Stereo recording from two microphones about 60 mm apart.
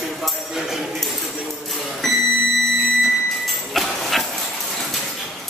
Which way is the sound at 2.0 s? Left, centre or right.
Centre.